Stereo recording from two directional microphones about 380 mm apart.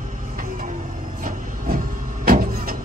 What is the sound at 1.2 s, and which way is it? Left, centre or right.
Vehicle, right.